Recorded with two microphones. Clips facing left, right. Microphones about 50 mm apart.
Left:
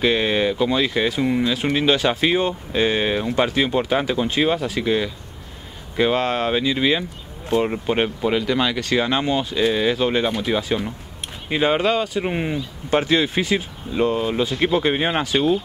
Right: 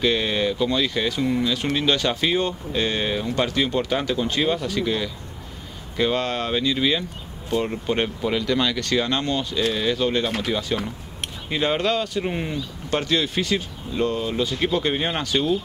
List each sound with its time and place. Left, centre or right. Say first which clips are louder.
0.0 s speech: left 3 dB; centre